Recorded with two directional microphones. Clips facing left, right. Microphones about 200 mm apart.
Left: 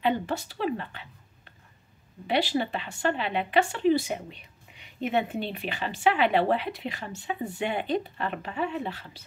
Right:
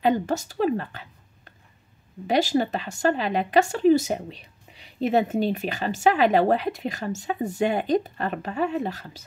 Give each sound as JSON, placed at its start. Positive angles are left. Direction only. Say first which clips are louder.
{"t": 0.0, "sound": "a woman's voice", "louder": "right 4 dB", "side_deg": -40}